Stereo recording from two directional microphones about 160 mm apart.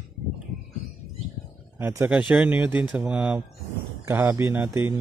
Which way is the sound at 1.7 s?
15° right (ahead or behind).